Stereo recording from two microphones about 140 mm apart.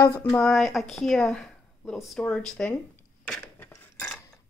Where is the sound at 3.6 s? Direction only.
15° left (ahead or behind).